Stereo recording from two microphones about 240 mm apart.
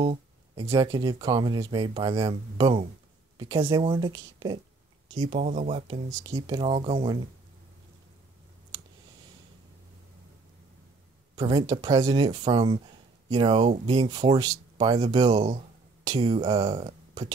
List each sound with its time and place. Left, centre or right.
0.0 s a sound: right
0.7 s speech: centre
5.4 s speech: right
11.3 s speech: centre